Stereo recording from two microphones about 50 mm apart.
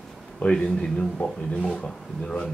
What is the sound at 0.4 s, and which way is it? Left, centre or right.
Speech, centre.